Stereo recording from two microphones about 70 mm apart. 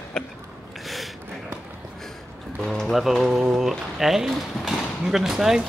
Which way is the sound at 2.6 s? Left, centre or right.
Centre.